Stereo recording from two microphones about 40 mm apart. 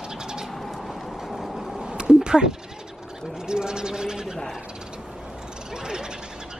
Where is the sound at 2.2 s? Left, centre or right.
Centre.